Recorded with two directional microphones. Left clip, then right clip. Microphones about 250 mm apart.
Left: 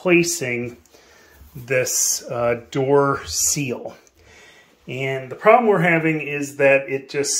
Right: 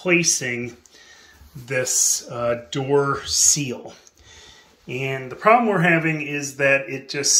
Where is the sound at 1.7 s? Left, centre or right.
Centre.